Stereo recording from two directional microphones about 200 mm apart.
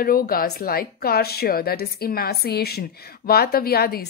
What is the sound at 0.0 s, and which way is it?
A woman's voice, 45° left (ahead or behind).